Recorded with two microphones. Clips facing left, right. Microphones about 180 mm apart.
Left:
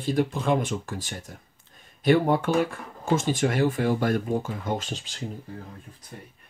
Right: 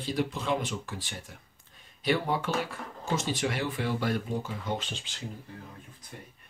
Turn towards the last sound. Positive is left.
turn(degrees=40)  # may be behind; listen again after turning